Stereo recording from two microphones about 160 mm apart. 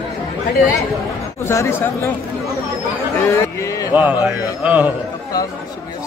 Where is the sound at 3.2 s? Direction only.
15° left (ahead or behind).